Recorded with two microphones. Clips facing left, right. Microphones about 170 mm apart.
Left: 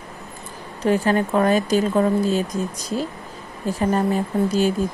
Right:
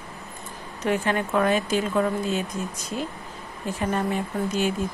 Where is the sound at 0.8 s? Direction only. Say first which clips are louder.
Left 5 dB; 35° left (ahead or behind).